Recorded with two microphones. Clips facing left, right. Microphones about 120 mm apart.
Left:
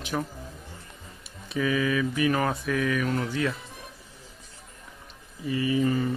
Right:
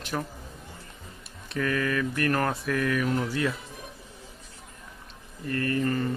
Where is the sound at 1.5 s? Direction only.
5° left (ahead or behind).